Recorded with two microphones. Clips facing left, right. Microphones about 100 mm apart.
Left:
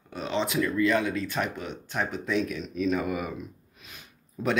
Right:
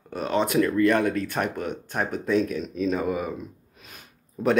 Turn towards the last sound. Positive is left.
turn(degrees=-45)  # may be behind; listen again after turning